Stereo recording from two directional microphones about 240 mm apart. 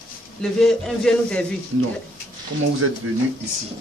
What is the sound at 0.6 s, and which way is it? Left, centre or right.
Speech, centre.